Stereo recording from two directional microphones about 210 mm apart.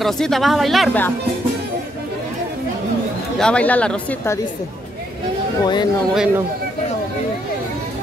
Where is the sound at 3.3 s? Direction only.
5° left (ahead or behind).